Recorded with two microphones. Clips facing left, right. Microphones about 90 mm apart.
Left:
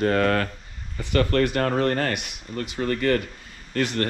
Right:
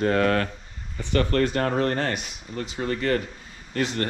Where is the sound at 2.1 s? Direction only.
5° left (ahead or behind).